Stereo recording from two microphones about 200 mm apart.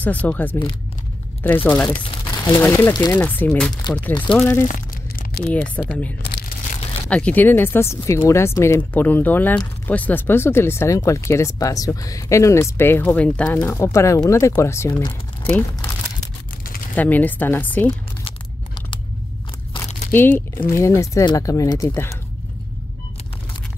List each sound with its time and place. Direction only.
0.0 s speech: 5° left (ahead or behind)
4.6 s crumpling: 45° left (ahead or behind)
5.9 s speech: 5° left (ahead or behind)
16.9 s speech: 10° left (ahead or behind)
20.1 s speech: 10° left (ahead or behind)